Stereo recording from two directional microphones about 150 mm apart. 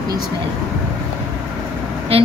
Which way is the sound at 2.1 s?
40° right (ahead or behind).